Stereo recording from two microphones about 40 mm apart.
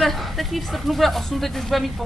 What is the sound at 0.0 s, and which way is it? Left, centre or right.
Speech, centre.